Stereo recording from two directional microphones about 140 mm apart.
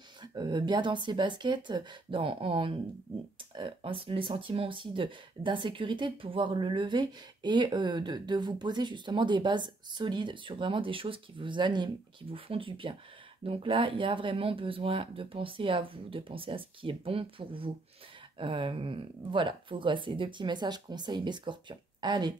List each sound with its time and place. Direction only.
0.2 s speech: 30° right (ahead or behind)